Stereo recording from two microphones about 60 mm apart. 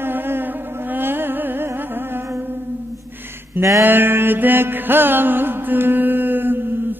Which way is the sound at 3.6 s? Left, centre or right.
Right.